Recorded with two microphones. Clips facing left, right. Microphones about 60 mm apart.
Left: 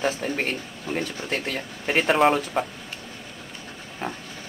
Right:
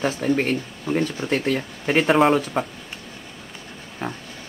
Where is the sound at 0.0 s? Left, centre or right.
Centre.